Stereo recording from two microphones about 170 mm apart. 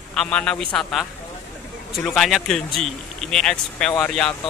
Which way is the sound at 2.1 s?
Centre (ahead or behind).